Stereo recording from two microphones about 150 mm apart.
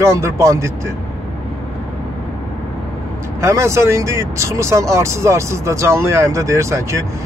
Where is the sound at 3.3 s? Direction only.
20° right (ahead or behind).